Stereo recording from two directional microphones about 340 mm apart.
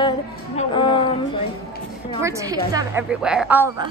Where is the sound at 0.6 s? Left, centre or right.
Centre.